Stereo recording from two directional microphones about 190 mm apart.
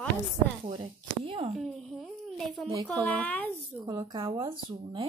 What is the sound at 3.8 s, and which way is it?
Speech, 20° right (ahead or behind).